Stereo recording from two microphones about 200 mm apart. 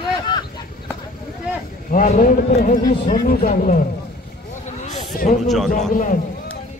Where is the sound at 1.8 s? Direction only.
45° left (ahead or behind).